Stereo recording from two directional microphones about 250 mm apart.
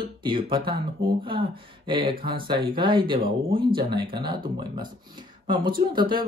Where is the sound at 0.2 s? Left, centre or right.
Centre.